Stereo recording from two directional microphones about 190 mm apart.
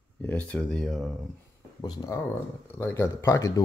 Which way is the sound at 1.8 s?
20° left (ahead or behind).